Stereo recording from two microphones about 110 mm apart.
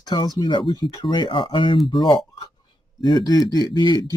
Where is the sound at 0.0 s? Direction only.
40° left (ahead or behind).